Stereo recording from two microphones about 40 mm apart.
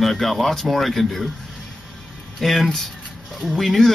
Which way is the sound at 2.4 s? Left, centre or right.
Centre.